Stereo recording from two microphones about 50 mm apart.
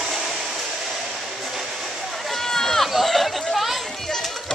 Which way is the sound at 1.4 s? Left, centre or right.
Centre.